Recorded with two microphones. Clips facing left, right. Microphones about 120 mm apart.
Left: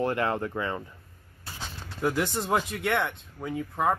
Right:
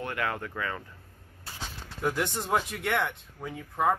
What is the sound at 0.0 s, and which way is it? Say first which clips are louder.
Speech: left 6 dB; 30° left (ahead or behind).